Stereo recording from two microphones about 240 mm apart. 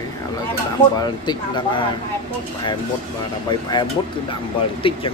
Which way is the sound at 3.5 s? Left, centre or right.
Centre.